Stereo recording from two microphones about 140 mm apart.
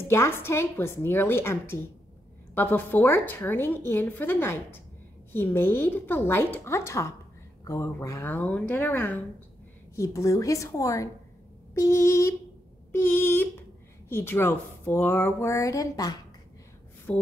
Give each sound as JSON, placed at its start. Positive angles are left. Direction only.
{"t": 0.1, "sound": "a woman's voice", "side_deg": 15}
{"t": 17.1, "sound": "a woman's voice", "side_deg": 10}